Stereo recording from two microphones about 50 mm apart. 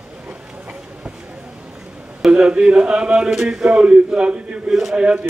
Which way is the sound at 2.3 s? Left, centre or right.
Centre.